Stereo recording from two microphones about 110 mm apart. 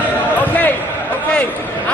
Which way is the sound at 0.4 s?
15° left (ahead or behind).